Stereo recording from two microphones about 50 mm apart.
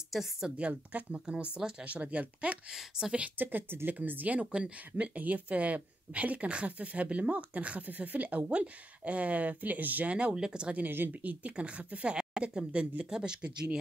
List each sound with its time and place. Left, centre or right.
0.1 s speech: centre
0.6 s speech: right
2.7 s speech: centre
3.3 s speech: right
10.1 s speech: centre
10.8 s speech: right
11.2 s speech: right